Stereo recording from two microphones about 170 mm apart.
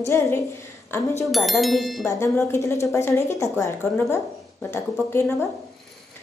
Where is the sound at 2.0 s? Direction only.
15° left (ahead or behind).